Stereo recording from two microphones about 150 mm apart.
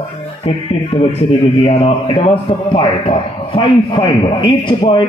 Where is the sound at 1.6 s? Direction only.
40° left (ahead or behind).